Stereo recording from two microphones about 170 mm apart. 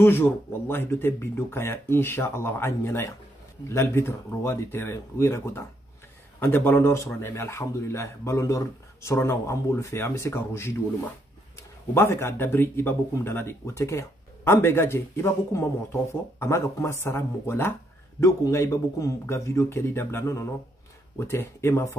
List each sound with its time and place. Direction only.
0.0 s speech: 15° left (ahead or behind)
11.9 s speech: 15° left (ahead or behind)